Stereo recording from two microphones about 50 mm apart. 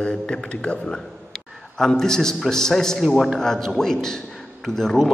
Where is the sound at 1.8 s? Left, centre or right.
Centre.